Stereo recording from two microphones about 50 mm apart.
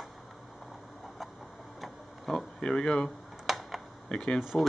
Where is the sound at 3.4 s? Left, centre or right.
Centre.